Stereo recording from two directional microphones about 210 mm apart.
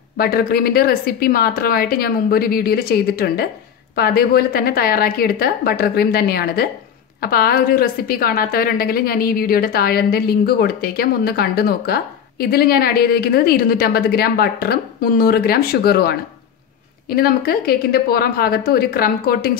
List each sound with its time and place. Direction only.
0.2 s a woman's voice: 45° left (ahead or behind)